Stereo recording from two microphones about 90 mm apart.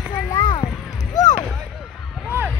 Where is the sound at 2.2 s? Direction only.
20° right (ahead or behind).